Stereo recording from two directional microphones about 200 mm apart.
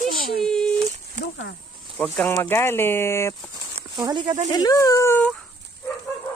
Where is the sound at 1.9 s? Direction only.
10° left (ahead or behind).